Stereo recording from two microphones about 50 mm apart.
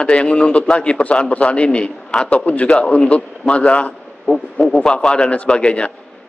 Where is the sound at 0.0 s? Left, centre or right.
Left.